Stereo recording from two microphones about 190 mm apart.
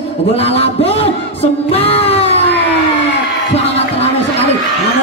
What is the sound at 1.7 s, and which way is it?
Music, 30° left (ahead or behind).